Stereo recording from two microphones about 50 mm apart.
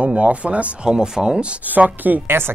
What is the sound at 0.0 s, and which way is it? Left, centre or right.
Speech, right.